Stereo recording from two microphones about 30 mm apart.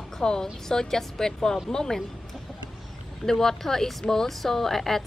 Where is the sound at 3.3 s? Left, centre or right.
Centre.